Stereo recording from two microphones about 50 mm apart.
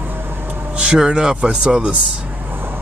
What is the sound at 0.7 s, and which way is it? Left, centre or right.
Speech, centre.